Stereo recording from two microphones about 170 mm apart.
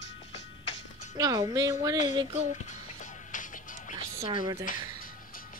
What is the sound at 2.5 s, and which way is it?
Music, 45° left (ahead or behind).